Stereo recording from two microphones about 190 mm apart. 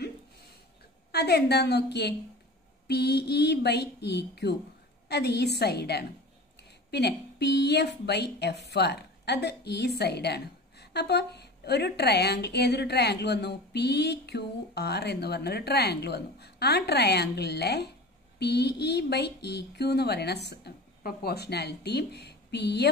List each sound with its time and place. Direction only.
1.1 s a woman's voice: 60° left (ahead or behind)